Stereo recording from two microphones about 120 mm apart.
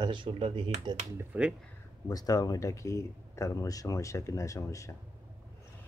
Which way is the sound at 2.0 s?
30° left (ahead or behind).